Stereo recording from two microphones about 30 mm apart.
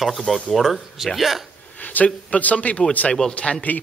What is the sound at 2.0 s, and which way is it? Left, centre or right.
A man's voice, left.